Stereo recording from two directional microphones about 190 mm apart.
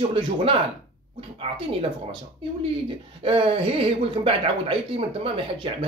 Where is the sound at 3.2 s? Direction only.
30° right (ahead or behind).